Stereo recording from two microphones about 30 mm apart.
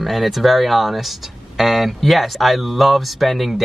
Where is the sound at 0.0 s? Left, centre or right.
Centre.